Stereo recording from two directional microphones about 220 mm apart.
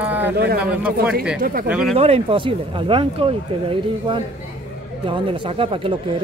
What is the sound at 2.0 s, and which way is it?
Speech, 25° right (ahead or behind).